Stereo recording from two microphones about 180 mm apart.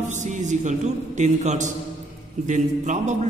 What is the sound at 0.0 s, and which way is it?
A man's voice, 45° right (ahead or behind).